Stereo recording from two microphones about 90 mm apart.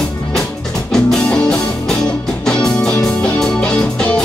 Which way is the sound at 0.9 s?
5° left (ahead or behind).